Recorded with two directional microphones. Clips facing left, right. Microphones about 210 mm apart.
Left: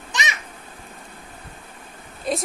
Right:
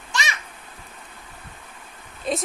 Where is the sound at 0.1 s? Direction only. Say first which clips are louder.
Even; 20° left (ahead or behind).